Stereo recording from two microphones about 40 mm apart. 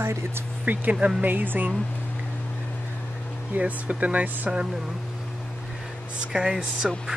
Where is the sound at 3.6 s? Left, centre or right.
Right.